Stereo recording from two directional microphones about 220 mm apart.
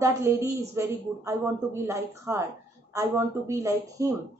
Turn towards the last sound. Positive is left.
turn(degrees=-15)  # may be behind; listen again after turning